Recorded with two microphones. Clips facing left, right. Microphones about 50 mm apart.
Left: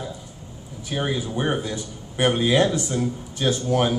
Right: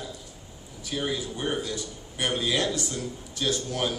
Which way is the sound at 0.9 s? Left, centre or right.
Left.